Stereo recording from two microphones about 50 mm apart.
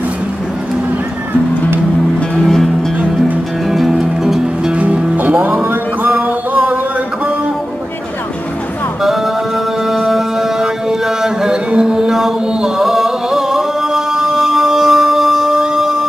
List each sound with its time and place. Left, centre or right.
2.4 s music: centre
3.7 s music: centre
4.7 s music: right
9.8 s music: centre